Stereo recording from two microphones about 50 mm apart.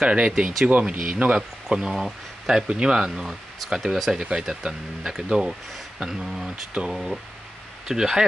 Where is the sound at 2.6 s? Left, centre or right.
Centre.